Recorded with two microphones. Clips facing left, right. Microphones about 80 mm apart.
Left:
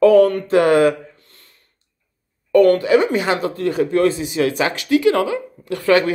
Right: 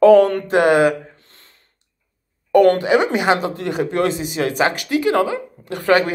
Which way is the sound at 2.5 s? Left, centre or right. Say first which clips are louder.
Even; right.